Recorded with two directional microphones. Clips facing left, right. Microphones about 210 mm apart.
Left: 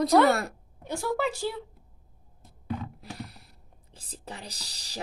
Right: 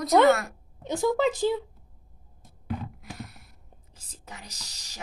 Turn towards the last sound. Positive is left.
turn(degrees=35)  # may be behind; listen again after turning